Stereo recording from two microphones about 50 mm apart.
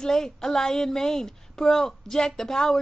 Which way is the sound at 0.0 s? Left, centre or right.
Centre.